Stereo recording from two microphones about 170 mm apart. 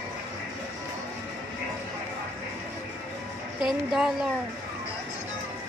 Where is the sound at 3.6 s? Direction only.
5° right (ahead or behind).